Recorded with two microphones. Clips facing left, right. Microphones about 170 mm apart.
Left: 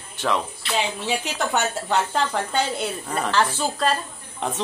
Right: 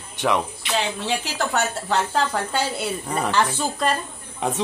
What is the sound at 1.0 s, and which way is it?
Speech, centre (ahead or behind).